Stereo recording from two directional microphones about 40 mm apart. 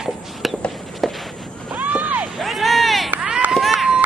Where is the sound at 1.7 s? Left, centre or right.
Right.